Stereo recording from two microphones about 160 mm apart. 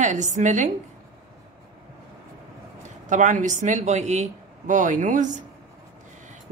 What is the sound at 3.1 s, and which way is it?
A woman's voice, 50° right (ahead or behind).